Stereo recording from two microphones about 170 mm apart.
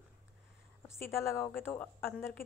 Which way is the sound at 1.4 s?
15° left (ahead or behind).